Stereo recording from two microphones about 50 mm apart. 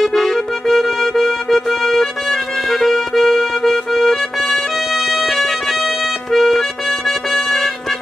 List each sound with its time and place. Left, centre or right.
0.0 s music: centre